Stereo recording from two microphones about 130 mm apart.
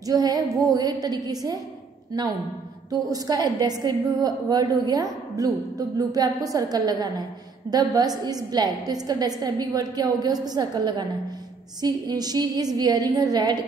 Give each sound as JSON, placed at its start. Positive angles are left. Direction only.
{"t": 0.0, "sound": "a woman's voice", "side_deg": -30}
{"t": 2.9, "sound": "a woman's voice", "side_deg": -30}